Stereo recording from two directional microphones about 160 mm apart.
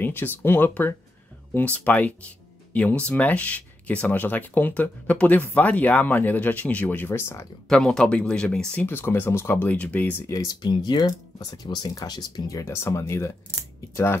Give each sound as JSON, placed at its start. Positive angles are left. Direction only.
{"t": 0.0, "sound": "speech", "side_deg": 10}
{"t": 7.6, "sound": "speech", "side_deg": 5}